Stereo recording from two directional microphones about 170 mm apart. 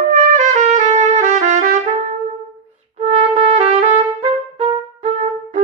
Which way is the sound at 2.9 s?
35° right (ahead or behind).